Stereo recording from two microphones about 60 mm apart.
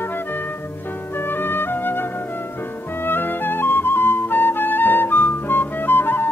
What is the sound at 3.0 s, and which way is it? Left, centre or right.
Flute, left.